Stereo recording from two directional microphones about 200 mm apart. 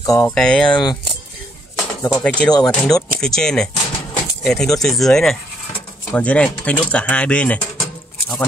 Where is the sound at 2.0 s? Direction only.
5° left (ahead or behind).